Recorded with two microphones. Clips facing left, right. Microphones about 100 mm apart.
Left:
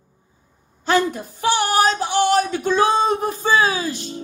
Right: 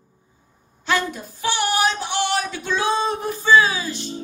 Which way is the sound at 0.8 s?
40° left (ahead or behind).